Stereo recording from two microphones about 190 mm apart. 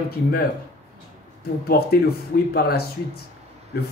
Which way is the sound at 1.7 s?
55° left (ahead or behind).